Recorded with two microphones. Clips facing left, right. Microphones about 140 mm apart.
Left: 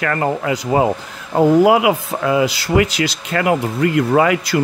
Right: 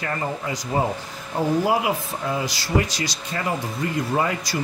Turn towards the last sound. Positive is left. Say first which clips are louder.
# left 9 dB
turn(degrees=80)